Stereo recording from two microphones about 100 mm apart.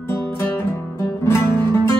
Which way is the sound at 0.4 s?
30° left (ahead or behind).